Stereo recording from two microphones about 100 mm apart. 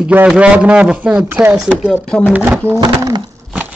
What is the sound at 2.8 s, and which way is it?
Bird, 45° right (ahead or behind).